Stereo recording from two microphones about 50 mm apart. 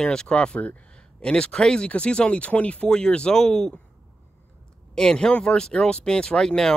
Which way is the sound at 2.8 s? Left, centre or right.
Centre.